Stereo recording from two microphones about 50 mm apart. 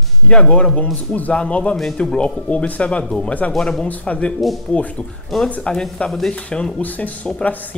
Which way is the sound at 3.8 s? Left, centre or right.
Left.